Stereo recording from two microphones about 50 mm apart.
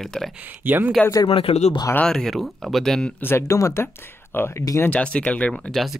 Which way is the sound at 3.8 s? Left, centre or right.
Left.